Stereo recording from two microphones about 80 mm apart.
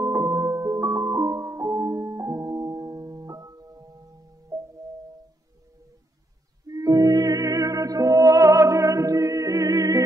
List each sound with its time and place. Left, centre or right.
0.0 s music: right
4.5 s music: right
6.7 s music: right